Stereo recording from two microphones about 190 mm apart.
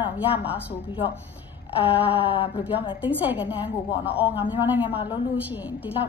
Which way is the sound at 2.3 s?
30° left (ahead or behind).